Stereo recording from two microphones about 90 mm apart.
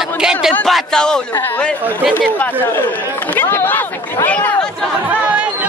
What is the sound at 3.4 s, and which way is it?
Speech, 20° left (ahead or behind).